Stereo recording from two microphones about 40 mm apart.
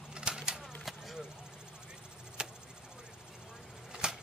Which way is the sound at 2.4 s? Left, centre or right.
Right.